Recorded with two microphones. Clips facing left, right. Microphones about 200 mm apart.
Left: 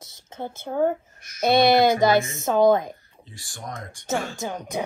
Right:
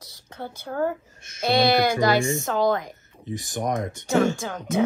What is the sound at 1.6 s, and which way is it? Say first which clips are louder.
Speech: left 3 dB; 20° left (ahead or behind).